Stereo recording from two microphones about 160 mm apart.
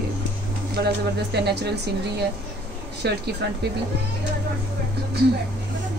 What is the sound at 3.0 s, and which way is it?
Speech, 90° right.